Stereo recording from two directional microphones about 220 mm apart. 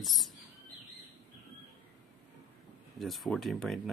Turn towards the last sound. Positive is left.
turn(degrees=0)  # may be behind; listen again after turning